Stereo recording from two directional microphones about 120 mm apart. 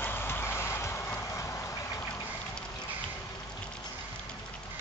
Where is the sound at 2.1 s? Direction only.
15° left (ahead or behind).